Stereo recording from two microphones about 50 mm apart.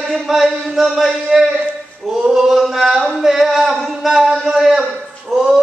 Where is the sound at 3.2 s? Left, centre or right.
Centre.